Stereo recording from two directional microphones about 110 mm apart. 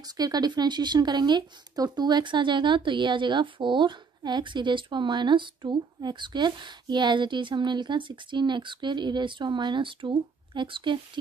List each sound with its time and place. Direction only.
0.2 s speech: 40° right (ahead or behind)